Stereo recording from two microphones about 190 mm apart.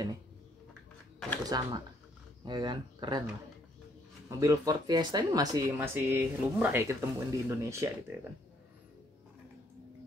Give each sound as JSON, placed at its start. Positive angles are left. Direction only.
{"t": 1.4, "sound": "speech", "side_deg": -20}
{"t": 4.3, "sound": "speech", "side_deg": -20}